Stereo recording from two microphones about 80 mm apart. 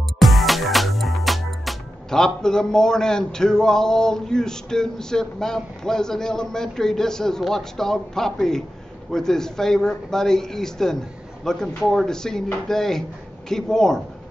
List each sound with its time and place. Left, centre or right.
0.2 s music: centre
9.1 s speech: centre